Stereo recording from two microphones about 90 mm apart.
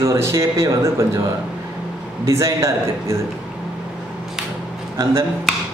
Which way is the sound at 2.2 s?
35° right (ahead or behind).